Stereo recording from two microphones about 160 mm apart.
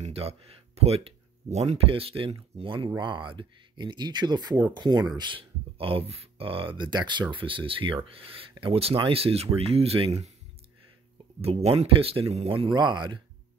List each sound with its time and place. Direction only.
0.0 s speech: 40° right (ahead or behind)
11.4 s speech: 35° right (ahead or behind)